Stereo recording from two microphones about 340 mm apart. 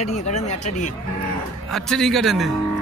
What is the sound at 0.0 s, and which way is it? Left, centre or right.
Speech, centre.